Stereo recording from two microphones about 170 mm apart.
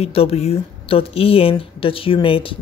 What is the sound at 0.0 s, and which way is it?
A woman's voice, 35° left (ahead or behind).